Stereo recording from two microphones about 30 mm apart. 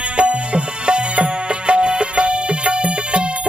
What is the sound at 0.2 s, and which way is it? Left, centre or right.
Music, right.